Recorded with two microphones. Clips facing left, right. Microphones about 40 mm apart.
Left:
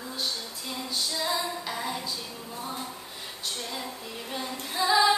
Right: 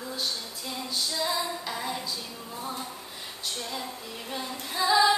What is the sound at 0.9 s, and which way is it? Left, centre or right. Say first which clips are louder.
Female singing: even; centre.